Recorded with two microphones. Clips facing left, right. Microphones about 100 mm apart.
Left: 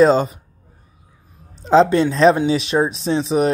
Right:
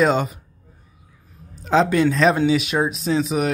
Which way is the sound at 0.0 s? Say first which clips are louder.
Left 5 dB; 35° left (ahead or behind).